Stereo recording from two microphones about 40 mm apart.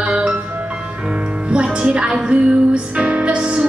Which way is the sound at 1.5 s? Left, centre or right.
Right.